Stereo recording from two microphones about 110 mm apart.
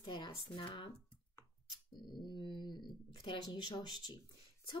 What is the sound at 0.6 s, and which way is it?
Speech, 45° left (ahead or behind).